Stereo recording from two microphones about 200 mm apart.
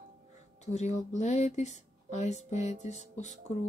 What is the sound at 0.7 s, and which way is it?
Speech, 35° left (ahead or behind).